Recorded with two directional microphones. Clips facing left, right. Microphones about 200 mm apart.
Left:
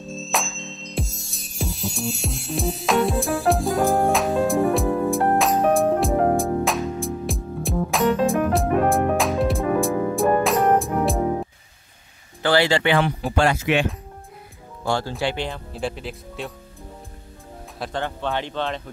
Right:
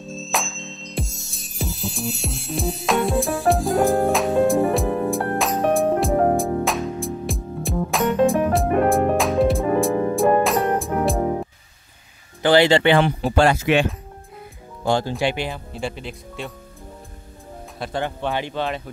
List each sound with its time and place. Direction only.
0.0 s music: centre (ahead or behind)
12.4 s speech: 20° right (ahead or behind); by 13.8 s 35° right (ahead or behind)
14.9 s speech: 15° right (ahead or behind); by 16.5 s centre (ahead or behind)
17.9 s speech: 15° right (ahead or behind)